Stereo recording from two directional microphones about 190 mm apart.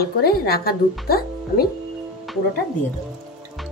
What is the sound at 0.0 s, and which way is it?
Speech, 55° left (ahead or behind).